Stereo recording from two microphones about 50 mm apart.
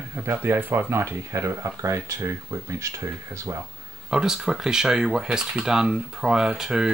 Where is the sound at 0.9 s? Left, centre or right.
Right.